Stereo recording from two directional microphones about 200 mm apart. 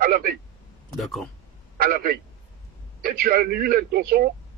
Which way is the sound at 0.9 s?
Centre (ahead or behind).